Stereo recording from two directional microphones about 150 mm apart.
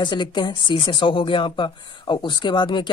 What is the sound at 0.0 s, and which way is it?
Speech, 30° left (ahead or behind).